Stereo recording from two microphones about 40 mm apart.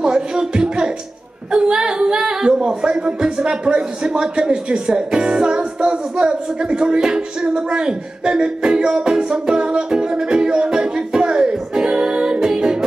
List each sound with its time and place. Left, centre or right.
0.0 s speech: right
1.5 s music: centre